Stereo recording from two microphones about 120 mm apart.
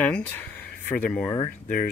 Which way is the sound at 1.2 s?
35° left (ahead or behind).